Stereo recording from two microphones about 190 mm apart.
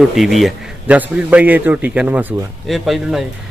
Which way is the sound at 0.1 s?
Centre (ahead or behind).